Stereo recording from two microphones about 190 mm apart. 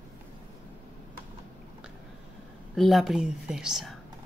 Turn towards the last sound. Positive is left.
turn(degrees=0)  # may be behind; listen again after turning